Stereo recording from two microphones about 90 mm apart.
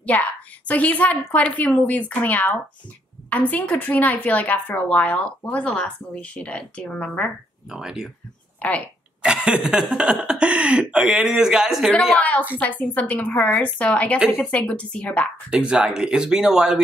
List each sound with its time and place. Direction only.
0.0 s speech: 15° left (ahead or behind)
7.7 s speech: 5° right (ahead or behind)
8.6 s speech: 15° left (ahead or behind)
9.2 s speech: 10° right (ahead or behind)
12.2 s speech: 15° left (ahead or behind)
15.5 s speech: 10° right (ahead or behind)